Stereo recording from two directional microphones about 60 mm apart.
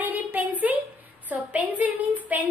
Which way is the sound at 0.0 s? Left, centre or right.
Right.